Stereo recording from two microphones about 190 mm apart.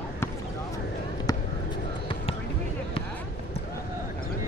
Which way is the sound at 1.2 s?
25° left (ahead or behind).